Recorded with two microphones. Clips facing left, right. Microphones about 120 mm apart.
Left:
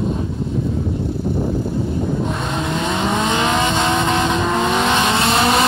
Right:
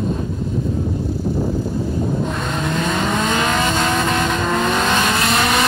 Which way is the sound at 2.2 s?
15° left (ahead or behind).